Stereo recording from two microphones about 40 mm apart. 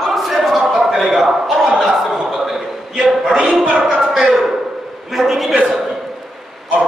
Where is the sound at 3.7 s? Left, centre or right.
Right.